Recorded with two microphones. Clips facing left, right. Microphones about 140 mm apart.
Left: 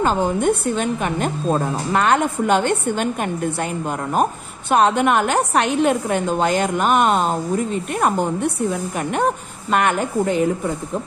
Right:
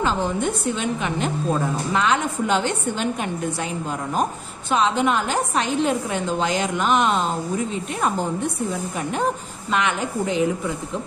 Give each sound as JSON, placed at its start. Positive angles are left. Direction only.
{"t": 0.0, "sound": "a woman's voice", "side_deg": 50}
{"t": 4.1, "sound": "a woman's voice", "side_deg": 55}
{"t": 9.1, "sound": "a woman's voice", "side_deg": 55}